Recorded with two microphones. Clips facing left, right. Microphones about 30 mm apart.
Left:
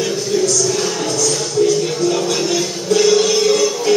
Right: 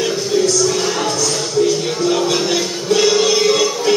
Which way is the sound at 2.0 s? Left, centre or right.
Right.